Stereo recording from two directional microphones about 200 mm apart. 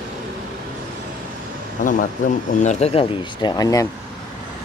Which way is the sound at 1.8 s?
40° left (ahead or behind).